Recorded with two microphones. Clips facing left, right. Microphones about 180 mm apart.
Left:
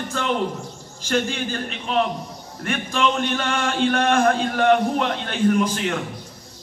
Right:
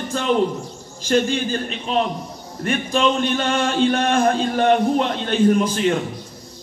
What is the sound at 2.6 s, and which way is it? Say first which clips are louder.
Speech: right 3 dB; 25° right (ahead or behind).